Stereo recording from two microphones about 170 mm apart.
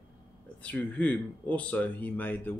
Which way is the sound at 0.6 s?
10° left (ahead or behind).